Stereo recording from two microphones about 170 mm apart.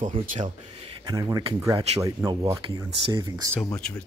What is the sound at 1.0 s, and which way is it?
Speech, 20° right (ahead or behind).